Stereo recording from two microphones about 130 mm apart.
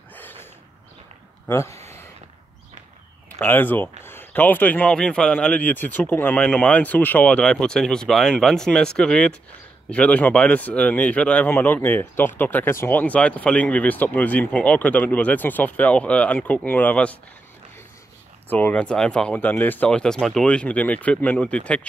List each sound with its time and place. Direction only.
0.1 s a sound: 15° left (ahead or behind)
1.5 s speech: 20° left (ahead or behind)
3.3 s speech: 15° left (ahead or behind)
18.5 s speech: 10° left (ahead or behind)